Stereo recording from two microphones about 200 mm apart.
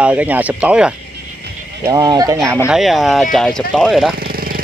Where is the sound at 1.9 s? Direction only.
20° right (ahead or behind).